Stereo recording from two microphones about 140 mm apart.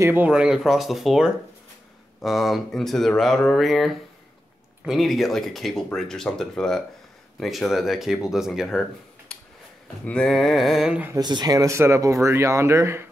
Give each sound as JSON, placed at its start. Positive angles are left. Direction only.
{"t": 0.0, "sound": "speech", "side_deg": -15}
{"t": 9.3, "sound": "a sound", "side_deg": 10}
{"t": 10.0, "sound": "speech", "side_deg": 5}
{"t": 11.1, "sound": "speech", "side_deg": -30}